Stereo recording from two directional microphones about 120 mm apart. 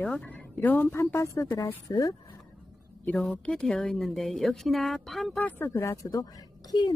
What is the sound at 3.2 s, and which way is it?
Speech, 5° left (ahead or behind).